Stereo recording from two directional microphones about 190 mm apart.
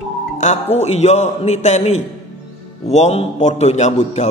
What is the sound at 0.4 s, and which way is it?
A man's voice, 35° left (ahead or behind).